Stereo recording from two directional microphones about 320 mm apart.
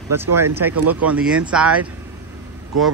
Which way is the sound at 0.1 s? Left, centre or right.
Centre.